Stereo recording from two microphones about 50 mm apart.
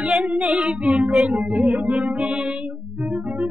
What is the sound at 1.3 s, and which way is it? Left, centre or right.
Music, centre.